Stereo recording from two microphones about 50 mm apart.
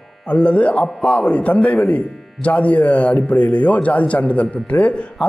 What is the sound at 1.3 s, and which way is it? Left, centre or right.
Speech, left.